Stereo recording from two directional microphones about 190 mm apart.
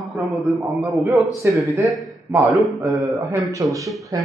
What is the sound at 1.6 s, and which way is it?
Speech, 15° right (ahead or behind).